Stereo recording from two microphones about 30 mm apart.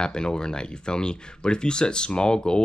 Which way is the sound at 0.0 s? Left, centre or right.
Left.